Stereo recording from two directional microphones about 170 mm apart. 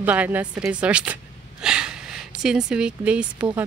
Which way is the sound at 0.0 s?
10° right (ahead or behind).